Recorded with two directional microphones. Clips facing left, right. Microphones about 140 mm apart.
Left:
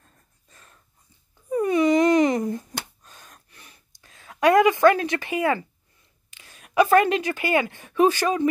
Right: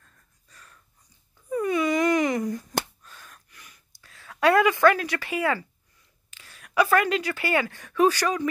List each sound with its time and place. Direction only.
0.0 s wheeze: 30° left (ahead or behind)
1.5 s wail: 25° left (ahead or behind)
2.8 s a sound: 20° left (ahead or behind)
6.3 s speech: 20° left (ahead or behind)